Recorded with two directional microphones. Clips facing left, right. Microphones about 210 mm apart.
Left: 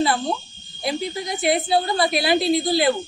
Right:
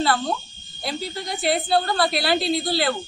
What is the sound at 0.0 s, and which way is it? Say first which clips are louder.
Speech: left 1 dB; 20° left (ahead or behind).